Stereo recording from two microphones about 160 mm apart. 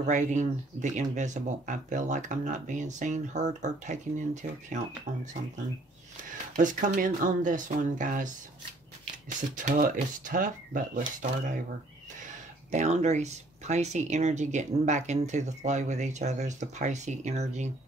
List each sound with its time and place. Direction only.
0.0 s speech: 50° right (ahead or behind)
6.5 s speech: 55° right (ahead or behind)
9.6 s speech: 55° right (ahead or behind)
12.7 s speech: 45° right (ahead or behind)